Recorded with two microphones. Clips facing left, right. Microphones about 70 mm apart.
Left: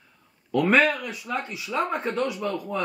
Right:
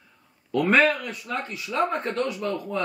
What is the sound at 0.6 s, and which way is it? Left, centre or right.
Speech, centre.